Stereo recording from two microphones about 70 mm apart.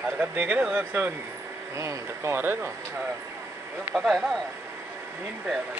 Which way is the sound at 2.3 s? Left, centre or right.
Right.